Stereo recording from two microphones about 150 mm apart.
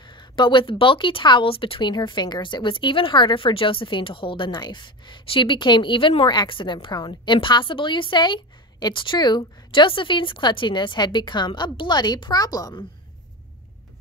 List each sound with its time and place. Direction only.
0.0 s speech: 30° left (ahead or behind)